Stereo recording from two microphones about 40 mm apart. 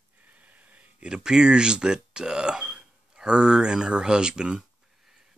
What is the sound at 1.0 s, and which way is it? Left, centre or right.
Speech, centre.